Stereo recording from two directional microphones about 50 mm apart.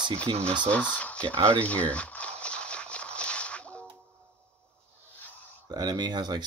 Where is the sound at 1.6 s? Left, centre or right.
Left.